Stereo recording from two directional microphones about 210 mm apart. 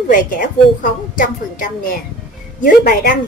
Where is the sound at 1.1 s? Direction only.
40° left (ahead or behind).